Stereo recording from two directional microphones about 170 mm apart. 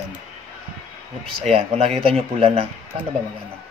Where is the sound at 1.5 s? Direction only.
35° right (ahead or behind).